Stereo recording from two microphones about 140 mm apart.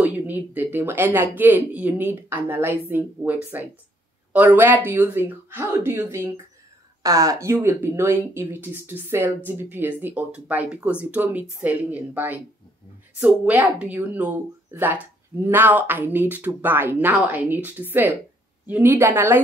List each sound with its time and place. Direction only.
0.0 s speech: 15° right (ahead or behind)